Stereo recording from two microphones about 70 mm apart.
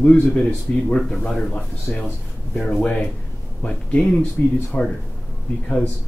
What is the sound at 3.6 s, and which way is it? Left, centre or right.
Speech, centre.